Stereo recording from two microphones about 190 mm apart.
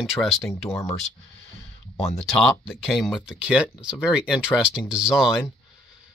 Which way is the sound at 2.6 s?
Centre (ahead or behind).